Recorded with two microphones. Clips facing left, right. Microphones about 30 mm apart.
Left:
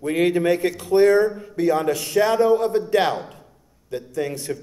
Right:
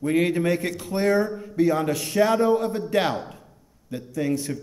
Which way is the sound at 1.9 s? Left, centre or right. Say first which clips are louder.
Left 5 dB; left.